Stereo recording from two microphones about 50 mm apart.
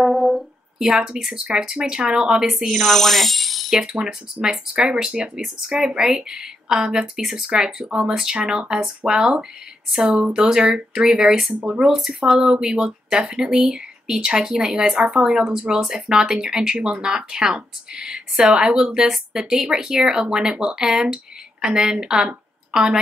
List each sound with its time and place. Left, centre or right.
0.0 s a sound: centre
0.7 s speech: centre
2.6 s speech: centre
3.7 s speech: centre